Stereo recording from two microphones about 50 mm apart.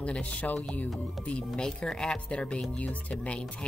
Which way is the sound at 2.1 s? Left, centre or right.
Left.